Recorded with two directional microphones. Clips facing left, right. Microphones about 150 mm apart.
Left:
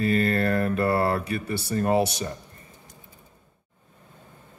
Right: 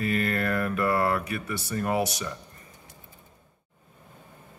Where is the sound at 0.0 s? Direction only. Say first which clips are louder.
Left 4 dB; 30° left (ahead or behind).